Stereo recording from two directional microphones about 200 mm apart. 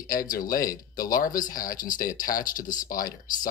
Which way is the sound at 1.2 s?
45° left (ahead or behind).